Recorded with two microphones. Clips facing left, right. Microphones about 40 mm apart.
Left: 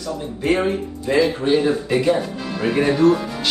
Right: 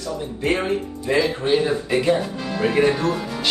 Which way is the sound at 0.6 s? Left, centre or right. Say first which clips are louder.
Left 2 dB; centre.